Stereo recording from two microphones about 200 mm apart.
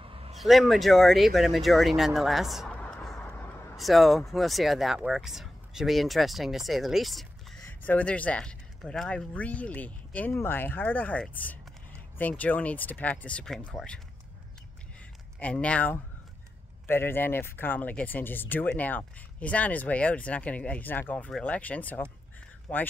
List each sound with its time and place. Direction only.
0.0 s a sound: 30° right (ahead or behind)
0.4 s speech: centre (ahead or behind)
15.3 s speech: 5° left (ahead or behind)